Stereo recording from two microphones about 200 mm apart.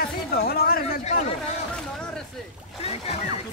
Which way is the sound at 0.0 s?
50° left (ahead or behind).